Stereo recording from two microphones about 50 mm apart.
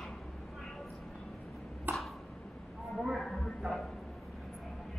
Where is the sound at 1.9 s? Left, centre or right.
Right.